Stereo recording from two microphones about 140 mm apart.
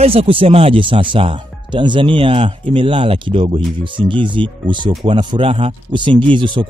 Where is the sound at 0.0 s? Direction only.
45° right (ahead or behind).